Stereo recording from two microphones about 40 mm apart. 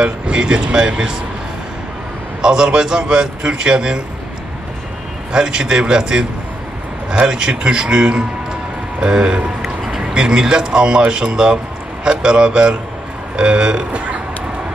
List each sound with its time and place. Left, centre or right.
0.0 s speech: right
2.4 s speech: centre
5.3 s speech: centre
13.9 s a sound: right